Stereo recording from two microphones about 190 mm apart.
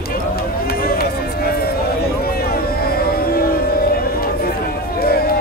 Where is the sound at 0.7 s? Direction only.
50° left (ahead or behind).